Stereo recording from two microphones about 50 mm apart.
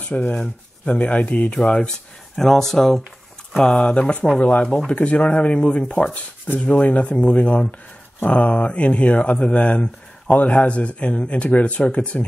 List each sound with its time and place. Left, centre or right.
0.3 s speech: left
2.3 s speech: centre
3.6 s speech: centre
8.3 s speech: left